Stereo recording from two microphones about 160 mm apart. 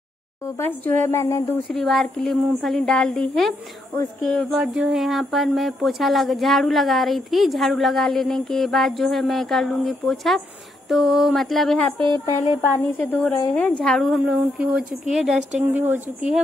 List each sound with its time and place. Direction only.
0.6 s speech: 15° left (ahead or behind)
1.7 s speech: centre (ahead or behind)
12.9 s speech: 10° left (ahead or behind); by 16.3 s 10° right (ahead or behind)